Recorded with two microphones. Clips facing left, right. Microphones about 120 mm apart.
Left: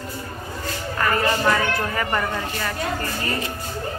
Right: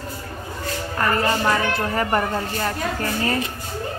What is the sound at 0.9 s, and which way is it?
A woman's voice, 25° right (ahead or behind).